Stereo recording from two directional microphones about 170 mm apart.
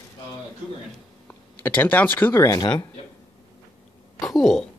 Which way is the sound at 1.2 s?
10° left (ahead or behind).